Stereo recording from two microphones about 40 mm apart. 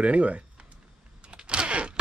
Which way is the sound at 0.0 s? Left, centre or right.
Right.